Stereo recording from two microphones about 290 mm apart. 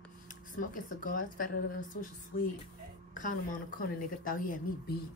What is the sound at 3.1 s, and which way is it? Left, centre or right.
Speech, left.